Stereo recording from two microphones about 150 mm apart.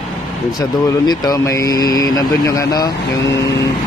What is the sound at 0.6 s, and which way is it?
Speech, 25° left (ahead or behind).